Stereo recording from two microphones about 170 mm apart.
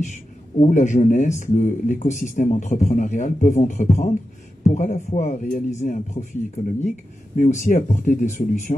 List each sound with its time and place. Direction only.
0.0 s speech: 45° left (ahead or behind)